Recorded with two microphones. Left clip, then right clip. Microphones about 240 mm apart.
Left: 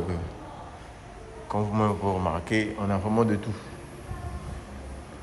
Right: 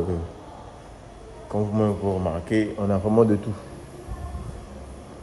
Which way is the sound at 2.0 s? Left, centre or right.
Centre.